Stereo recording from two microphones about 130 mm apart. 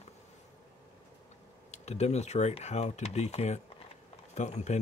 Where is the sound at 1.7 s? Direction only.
60° left (ahead or behind).